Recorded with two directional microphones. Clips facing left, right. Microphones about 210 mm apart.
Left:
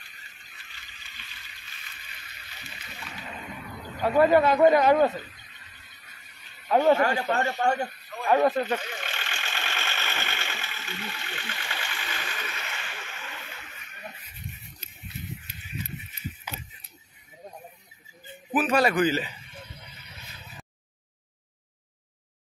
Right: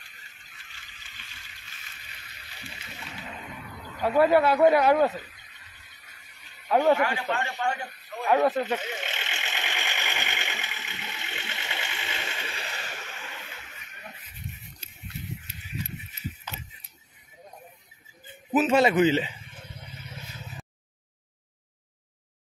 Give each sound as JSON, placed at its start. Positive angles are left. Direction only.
{"t": 0.7, "sound": "a sound", "side_deg": -50}
{"t": 4.0, "sound": "speech", "side_deg": -5}
{"t": 6.7, "sound": "speech", "side_deg": -15}
{"t": 7.0, "sound": "speech", "side_deg": 40}
{"t": 8.3, "sound": "speech", "side_deg": -5}
{"t": 8.7, "sound": "vehicle", "side_deg": -20}
{"t": 14.8, "sound": "a sound", "side_deg": -30}
{"t": 16.5, "sound": "a sound", "side_deg": 10}
{"t": 18.5, "sound": "a man's voice", "side_deg": -25}